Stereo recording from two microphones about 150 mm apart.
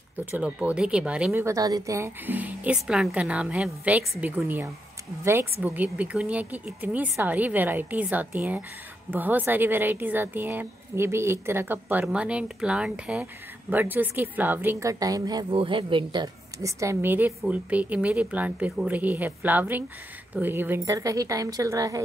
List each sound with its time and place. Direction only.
0.2 s a woman's voice: 10° right (ahead or behind)
1.4 s a woman's voice: 25° right (ahead or behind)